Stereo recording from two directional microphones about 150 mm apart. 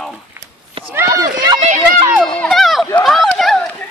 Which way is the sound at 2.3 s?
5° left (ahead or behind).